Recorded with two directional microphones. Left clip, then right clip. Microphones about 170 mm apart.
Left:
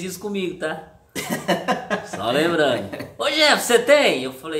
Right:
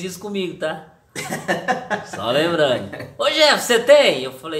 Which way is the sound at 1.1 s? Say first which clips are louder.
Even; 20° left (ahead or behind).